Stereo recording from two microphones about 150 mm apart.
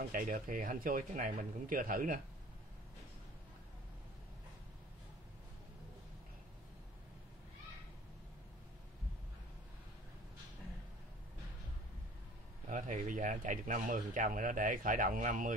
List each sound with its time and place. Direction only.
0.1 s speech: 65° right (ahead or behind)
12.6 s speech: 55° right (ahead or behind)